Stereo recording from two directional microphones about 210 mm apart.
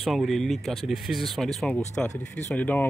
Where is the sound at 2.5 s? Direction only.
10° left (ahead or behind).